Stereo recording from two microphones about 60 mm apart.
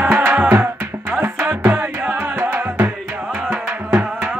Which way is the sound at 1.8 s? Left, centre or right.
Right.